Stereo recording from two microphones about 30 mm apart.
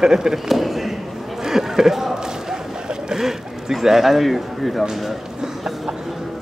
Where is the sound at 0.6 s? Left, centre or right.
Centre.